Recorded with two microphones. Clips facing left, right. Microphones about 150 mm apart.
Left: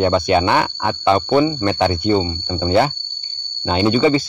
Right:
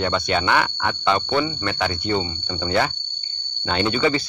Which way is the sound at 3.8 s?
25° left (ahead or behind).